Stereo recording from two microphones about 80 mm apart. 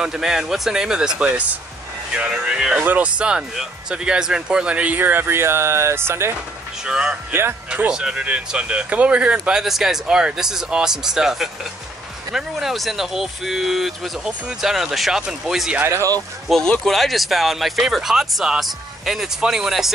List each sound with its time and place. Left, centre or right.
0.0 s speech: centre; by 6.3 s right
6.8 s speech: centre
15.8 s speech: right
16.5 s speech: centre